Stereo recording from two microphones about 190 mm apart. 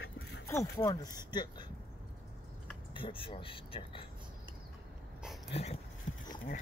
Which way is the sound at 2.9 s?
25° left (ahead or behind).